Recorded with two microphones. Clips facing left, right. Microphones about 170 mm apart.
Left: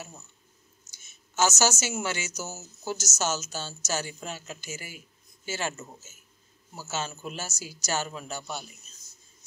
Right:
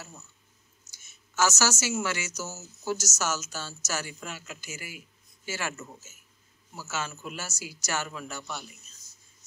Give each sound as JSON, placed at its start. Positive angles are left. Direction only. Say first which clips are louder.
{"t": 1.3, "sound": "speech", "louder": "left 1 dB", "side_deg": 25}